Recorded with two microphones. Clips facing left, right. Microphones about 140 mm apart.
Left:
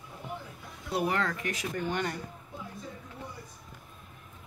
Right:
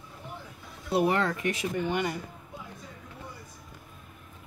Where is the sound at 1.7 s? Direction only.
5° right (ahead or behind).